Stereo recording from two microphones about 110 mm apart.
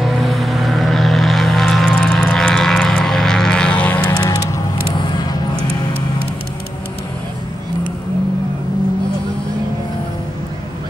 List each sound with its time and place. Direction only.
0.0 s vehicle: centre (ahead or behind)
4.1 s vehicle: 40° left (ahead or behind)